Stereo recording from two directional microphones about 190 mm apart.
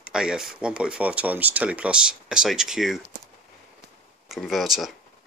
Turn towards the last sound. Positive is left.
turn(degrees=0)  # may be behind; listen again after turning